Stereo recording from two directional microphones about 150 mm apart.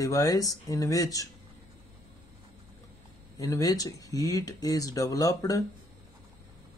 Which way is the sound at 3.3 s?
20° left (ahead or behind).